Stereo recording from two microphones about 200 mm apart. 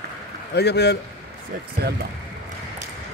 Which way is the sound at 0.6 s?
55° left (ahead or behind).